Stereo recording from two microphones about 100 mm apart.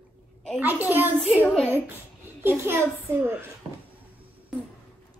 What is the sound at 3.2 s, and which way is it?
Speech, 20° right (ahead or behind).